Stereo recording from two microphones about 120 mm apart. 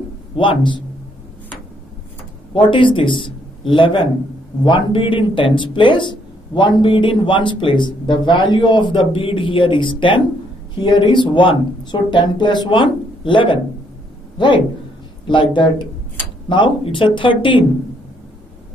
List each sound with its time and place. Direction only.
0.4 s speech: 45° left (ahead or behind)
2.5 s speech: 45° left (ahead or behind)
15.2 s speech: 40° left (ahead or behind)